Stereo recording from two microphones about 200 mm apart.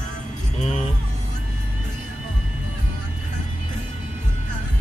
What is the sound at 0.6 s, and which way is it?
Vehicle, 35° left (ahead or behind).